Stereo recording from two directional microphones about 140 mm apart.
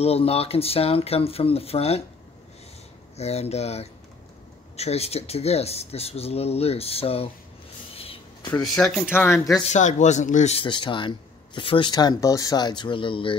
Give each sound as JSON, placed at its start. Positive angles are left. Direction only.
{"t": 0.0, "sound": "speech", "side_deg": 45}
{"t": 3.2, "sound": "speech", "side_deg": 50}
{"t": 7.9, "sound": "a sound", "side_deg": 40}
{"t": 8.6, "sound": "speech", "side_deg": 0}
{"t": 9.1, "sound": "speech", "side_deg": 15}
{"t": 9.7, "sound": "speech", "side_deg": 60}
{"t": 10.5, "sound": "speech", "side_deg": 35}